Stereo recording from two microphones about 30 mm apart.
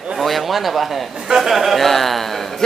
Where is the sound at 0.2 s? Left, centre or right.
Centre.